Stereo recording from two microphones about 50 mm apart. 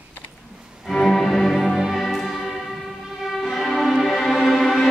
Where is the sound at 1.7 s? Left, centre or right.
Centre.